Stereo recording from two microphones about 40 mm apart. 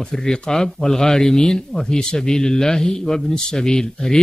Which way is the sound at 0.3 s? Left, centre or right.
Centre.